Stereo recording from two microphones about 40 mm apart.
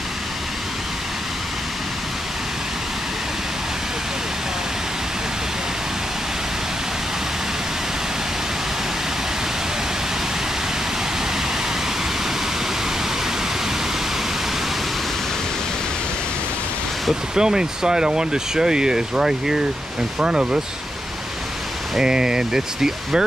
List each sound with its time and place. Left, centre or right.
17.4 s speech: centre
21.9 s speech: centre